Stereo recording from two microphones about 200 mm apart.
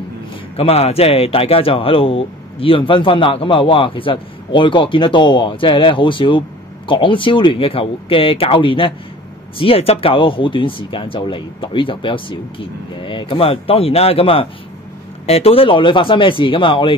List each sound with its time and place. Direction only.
0.6 s speech: 30° left (ahead or behind)